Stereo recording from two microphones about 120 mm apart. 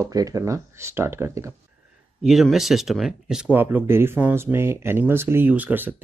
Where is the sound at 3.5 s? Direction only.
15° right (ahead or behind).